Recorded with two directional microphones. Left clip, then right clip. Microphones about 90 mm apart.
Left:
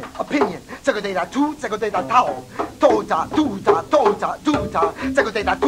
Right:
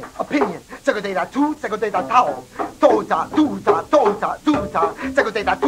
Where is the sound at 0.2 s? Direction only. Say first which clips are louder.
Even; 25° left (ahead or behind).